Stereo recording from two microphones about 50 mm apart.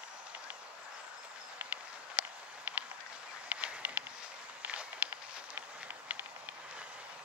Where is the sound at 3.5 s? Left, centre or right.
Right.